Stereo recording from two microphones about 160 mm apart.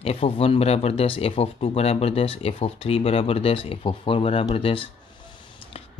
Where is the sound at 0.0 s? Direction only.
40° left (ahead or behind).